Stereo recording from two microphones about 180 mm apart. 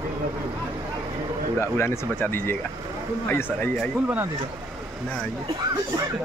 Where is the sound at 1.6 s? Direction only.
15° left (ahead or behind).